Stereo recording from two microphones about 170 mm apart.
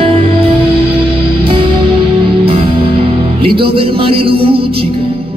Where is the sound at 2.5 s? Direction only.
35° right (ahead or behind).